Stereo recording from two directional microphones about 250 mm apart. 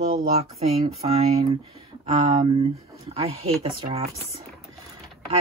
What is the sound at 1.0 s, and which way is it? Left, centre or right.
Speech, right.